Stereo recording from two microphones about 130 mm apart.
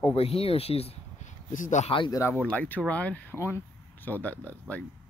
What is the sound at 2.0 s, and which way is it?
Speech, 25° left (ahead or behind).